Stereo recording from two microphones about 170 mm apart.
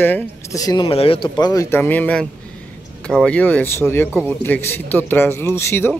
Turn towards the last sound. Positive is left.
turn(degrees=15)  # may be behind; listen again after turning